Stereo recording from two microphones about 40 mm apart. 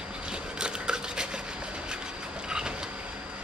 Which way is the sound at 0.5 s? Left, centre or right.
Centre.